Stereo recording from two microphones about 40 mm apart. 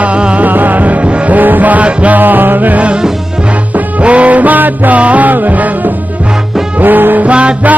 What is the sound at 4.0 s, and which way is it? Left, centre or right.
Music, right.